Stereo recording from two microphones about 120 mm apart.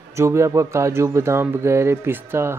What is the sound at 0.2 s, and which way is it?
Speech, 25° right (ahead or behind).